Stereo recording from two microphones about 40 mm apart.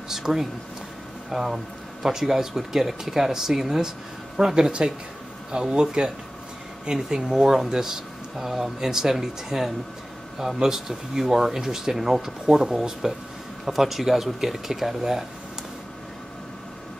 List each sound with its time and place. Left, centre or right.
0.1 s speech: centre